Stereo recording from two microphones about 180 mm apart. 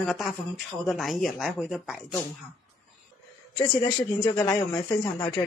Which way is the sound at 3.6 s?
25° left (ahead or behind).